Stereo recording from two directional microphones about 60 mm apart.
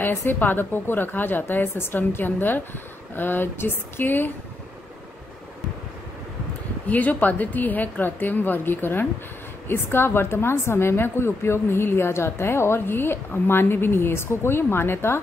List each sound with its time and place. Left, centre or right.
0.0 s a woman's voice: left
6.9 s a woman's voice: left